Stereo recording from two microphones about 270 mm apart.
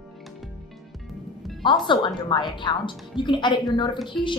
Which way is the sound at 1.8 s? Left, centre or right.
Centre.